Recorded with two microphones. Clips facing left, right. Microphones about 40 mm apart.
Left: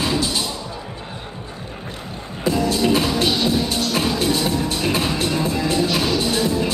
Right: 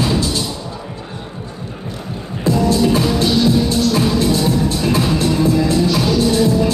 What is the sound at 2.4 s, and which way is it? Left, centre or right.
Music, left.